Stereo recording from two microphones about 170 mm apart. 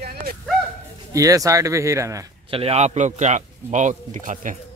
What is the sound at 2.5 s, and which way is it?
A man's voice, 35° right (ahead or behind).